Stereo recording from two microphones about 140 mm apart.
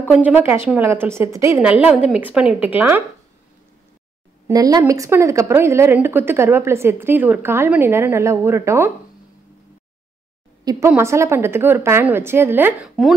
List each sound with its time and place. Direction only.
0.1 s speech: 10° right (ahead or behind)
1.6 s speech: 10° right (ahead or behind)
4.5 s speech: 25° right (ahead or behind)
10.6 s a sound: 25° right (ahead or behind)
11.0 s speech: 20° right (ahead or behind)